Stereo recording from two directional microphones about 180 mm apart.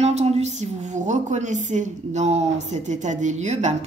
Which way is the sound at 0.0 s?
35° right (ahead or behind).